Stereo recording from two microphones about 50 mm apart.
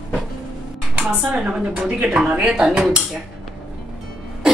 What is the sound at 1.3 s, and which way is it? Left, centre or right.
Speech, right.